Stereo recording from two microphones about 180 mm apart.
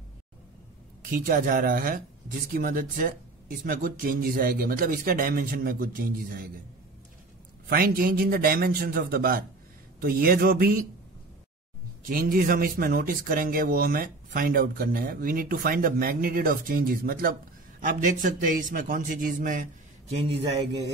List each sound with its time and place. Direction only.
1.0 s speech: 50° right (ahead or behind)
7.7 s a man's voice: 55° right (ahead or behind)
12.1 s speech: 50° right (ahead or behind)